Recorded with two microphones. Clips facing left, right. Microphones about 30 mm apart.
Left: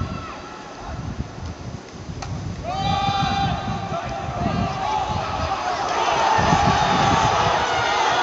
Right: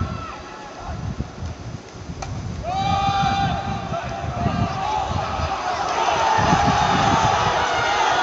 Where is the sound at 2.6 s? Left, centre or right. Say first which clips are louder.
Right 2 dB; centre.